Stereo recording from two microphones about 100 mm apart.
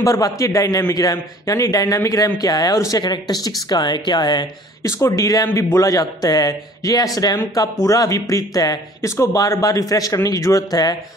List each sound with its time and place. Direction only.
0.0 s speech: 35° left (ahead or behind)
4.8 s speech: 30° left (ahead or behind)